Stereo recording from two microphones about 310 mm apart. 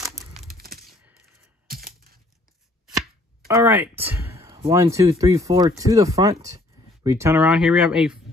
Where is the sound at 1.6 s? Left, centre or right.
Right.